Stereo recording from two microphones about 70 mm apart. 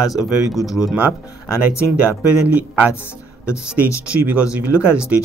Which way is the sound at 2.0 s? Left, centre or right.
Right.